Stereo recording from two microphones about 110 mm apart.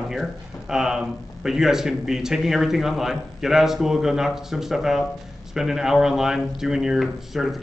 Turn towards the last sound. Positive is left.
turn(degrees=0)  # may be behind; listen again after turning